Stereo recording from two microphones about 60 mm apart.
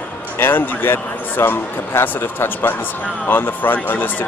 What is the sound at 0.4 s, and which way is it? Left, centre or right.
Speech, left.